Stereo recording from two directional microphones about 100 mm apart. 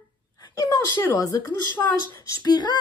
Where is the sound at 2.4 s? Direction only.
45° left (ahead or behind).